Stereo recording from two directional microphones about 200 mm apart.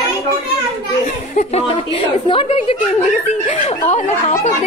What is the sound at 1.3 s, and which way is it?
A woman's voice, 35° left (ahead or behind).